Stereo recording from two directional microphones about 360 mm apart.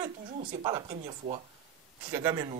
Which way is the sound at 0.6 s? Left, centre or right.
Centre.